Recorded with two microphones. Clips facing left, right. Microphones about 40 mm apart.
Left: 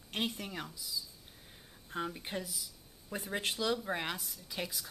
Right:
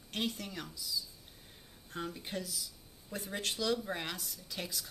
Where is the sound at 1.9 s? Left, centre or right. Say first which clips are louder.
Left 2 dB; centre.